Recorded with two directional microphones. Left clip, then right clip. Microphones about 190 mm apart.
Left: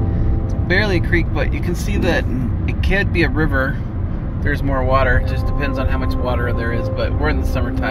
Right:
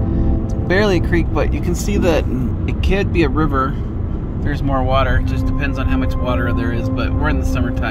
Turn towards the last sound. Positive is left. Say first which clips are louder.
# even
turn(degrees=-10)  # may be behind; listen again after turning